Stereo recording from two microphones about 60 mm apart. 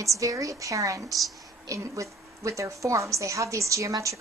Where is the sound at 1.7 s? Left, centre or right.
Right.